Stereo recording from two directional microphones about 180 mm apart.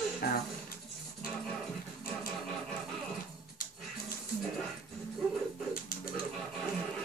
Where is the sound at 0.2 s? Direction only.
55° left (ahead or behind).